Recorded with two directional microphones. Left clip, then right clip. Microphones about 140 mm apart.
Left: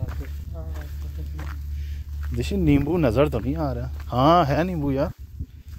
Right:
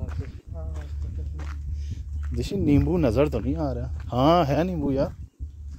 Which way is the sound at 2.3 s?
35° right (ahead or behind).